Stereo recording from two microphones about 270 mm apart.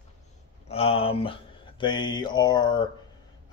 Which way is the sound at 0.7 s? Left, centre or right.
Left.